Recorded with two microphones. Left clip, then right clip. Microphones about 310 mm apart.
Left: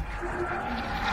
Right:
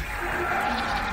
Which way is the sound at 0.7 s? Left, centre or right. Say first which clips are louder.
Right 6 dB; right.